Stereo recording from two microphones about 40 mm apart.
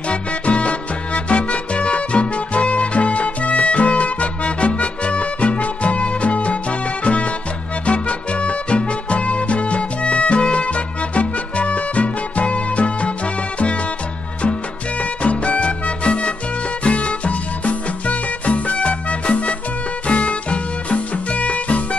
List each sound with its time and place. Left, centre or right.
0.1 s music: left
15.0 s music: left